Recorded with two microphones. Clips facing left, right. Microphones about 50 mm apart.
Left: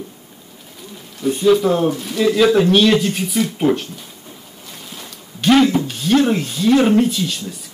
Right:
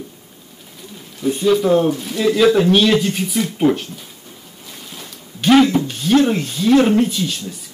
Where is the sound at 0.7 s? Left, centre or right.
Centre.